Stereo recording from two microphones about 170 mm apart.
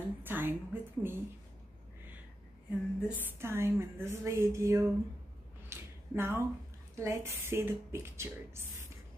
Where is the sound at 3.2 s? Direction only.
15° right (ahead or behind).